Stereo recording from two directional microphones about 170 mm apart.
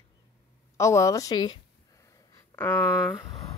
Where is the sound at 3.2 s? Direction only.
25° left (ahead or behind).